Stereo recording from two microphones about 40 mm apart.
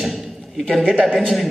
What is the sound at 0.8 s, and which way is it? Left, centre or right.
Speech, right.